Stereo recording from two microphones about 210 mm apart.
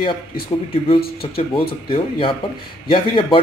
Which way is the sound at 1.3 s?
25° left (ahead or behind).